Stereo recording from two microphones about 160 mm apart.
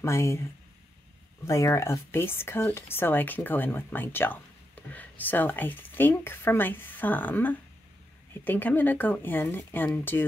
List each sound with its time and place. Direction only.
0.0 s speech: 15° left (ahead or behind)